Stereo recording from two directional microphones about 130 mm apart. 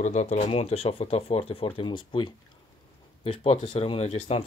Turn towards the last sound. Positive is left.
turn(degrees=50)  # may be behind; listen again after turning